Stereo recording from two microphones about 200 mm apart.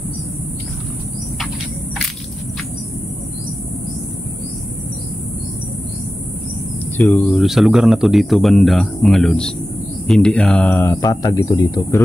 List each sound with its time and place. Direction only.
7.0 s speech: 5° left (ahead or behind)